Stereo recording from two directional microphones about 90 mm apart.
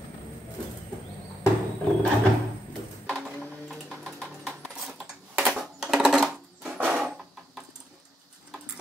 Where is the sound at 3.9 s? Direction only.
5° right (ahead or behind).